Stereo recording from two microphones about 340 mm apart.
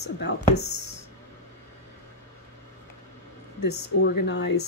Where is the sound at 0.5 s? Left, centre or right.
Left.